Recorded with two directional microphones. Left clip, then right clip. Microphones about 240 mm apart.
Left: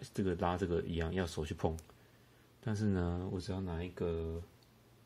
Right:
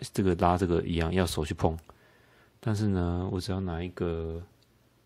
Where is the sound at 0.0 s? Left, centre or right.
Right.